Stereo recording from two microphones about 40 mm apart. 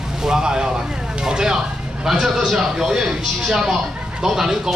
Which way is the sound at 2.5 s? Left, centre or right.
Centre.